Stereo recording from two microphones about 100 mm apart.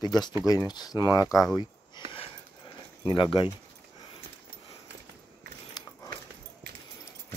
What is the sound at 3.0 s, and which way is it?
Speech, 55° left (ahead or behind).